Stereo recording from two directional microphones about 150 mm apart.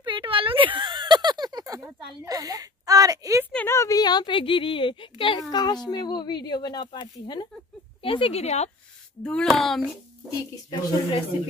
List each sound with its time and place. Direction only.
0.0 s a sound: 35° right (ahead or behind)
3.5 s a woman's voice: 15° left (ahead or behind); by 8.6 s 45° left (ahead or behind)
9.2 s speech: 5° left (ahead or behind)
10.5 s speech: 30° left (ahead or behind)